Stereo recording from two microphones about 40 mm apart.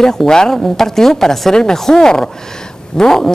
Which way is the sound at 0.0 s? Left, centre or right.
Centre.